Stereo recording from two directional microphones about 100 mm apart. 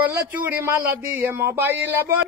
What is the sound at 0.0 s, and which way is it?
Speech, 15° right (ahead or behind).